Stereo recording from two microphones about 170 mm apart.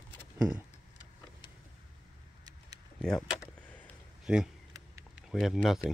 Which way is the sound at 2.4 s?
25° right (ahead or behind).